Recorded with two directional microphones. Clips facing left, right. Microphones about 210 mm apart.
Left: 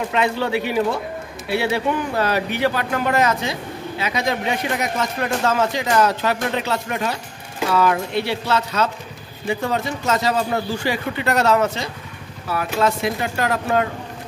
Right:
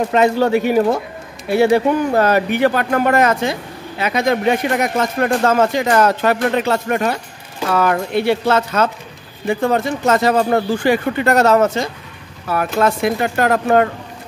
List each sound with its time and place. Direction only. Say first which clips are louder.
0.1 s speech: right 7 dB; 45° right (ahead or behind)